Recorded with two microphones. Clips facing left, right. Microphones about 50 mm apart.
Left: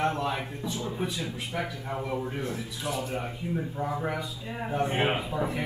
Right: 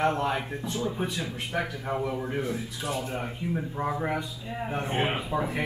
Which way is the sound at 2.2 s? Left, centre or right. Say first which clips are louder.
Right 3 dB; centre.